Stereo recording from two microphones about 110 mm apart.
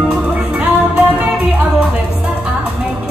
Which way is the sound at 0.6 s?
10° right (ahead or behind).